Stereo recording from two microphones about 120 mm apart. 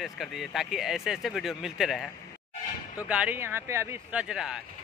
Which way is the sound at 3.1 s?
10° right (ahead or behind).